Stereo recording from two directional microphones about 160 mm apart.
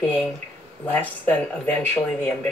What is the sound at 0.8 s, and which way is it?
Speech, 10° left (ahead or behind).